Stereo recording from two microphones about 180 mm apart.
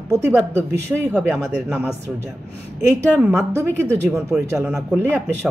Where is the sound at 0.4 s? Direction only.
15° right (ahead or behind).